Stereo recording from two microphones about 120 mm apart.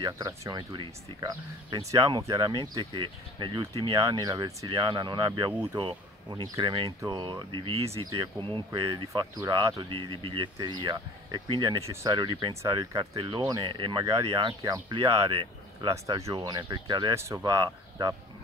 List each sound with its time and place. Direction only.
0.0 s speech: 35° right (ahead or behind); by 8.0 s 55° right (ahead or behind)
8.5 s speech: 45° right (ahead or behind)
9.1 s speech: 25° right (ahead or behind)
9.8 s speech: 50° right (ahead or behind)
11.8 s speech: 25° right (ahead or behind)
12.2 s speech: 40° right (ahead or behind)
15.9 s speech: 25° right (ahead or behind)
17.1 s speech: 25° right (ahead or behind)